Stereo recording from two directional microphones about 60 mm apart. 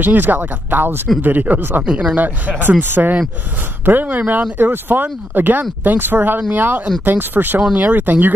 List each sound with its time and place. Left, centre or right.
0.0 s speech: right